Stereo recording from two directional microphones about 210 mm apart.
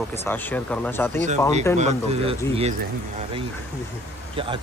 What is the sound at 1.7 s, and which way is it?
Speech, 30° right (ahead or behind).